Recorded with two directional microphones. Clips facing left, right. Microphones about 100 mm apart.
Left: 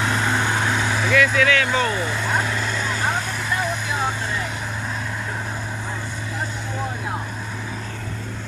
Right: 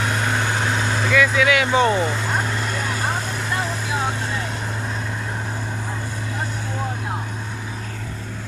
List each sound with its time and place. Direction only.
1.1 s speech: 5° right (ahead or behind); by 2.0 s 25° right (ahead or behind)